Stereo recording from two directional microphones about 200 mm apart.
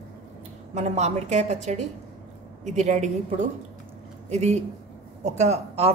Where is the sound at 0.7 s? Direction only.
35° right (ahead or behind).